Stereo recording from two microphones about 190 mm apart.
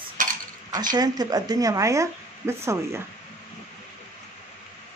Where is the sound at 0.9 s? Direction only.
20° right (ahead or behind).